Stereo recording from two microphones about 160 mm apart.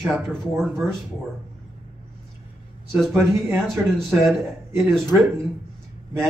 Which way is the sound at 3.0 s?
Centre (ahead or behind).